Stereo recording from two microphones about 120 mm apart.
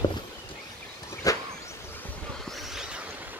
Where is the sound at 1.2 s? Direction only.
30° left (ahead or behind).